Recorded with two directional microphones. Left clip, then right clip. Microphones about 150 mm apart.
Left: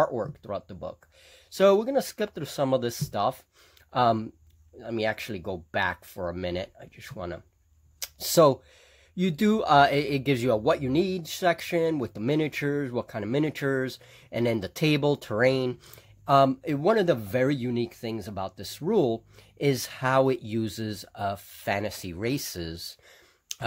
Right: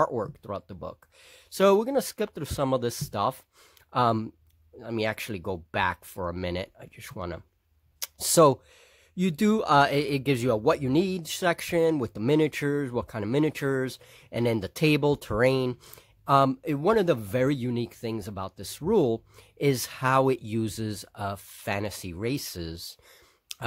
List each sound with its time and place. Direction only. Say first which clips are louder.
0.0 s speech: even; 45° right (ahead or behind); by 22.9 s 30° right (ahead or behind)
23.5 s clicking: left 2 dB; 40° right (ahead or behind)